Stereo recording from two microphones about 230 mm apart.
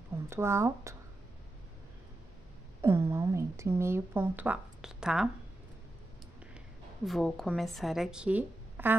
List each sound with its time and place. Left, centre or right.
0.3 s speech: centre
2.8 s a woman's voice: centre
7.1 s a woman's voice: centre